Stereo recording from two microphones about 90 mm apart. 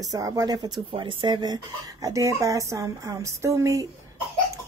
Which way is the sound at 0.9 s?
65° right (ahead or behind).